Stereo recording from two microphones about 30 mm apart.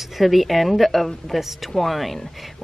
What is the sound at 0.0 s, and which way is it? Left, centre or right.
Speech, centre.